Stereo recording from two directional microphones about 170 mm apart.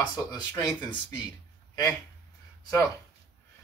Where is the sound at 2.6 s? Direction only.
20° left (ahead or behind).